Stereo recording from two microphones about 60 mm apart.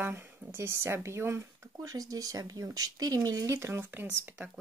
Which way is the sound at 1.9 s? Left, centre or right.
Right.